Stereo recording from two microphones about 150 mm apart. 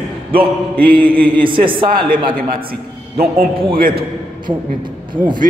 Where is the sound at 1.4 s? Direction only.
35° right (ahead or behind).